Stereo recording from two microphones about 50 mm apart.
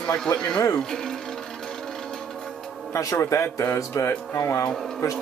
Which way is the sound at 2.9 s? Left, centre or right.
Left.